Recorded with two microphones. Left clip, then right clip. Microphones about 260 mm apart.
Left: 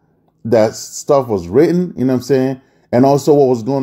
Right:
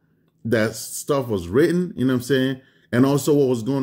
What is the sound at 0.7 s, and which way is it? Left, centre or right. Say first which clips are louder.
Speech: left 5 dB; centre.